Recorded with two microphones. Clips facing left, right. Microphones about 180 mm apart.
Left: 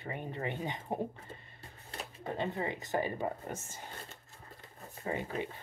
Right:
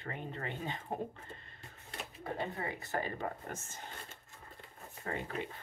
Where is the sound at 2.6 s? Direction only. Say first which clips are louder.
Left 4 dB; 15° left (ahead or behind).